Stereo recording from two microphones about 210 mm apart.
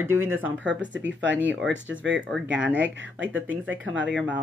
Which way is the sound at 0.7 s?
60° right (ahead or behind).